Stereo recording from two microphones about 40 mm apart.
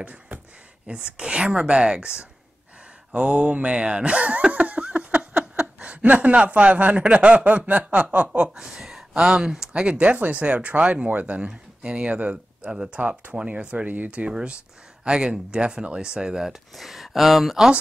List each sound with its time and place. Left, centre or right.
0.0 s a sound: right
0.8 s speech: right
7.5 s chuckle: right
8.5 s speech: centre; by 10.8 s right
10.8 s chuckle: right
11.4 s speech: right
12.7 s speech: right
13.5 s chuckle: right
13.8 s speech: right
14.3 s speech: right
16.4 s speech: centre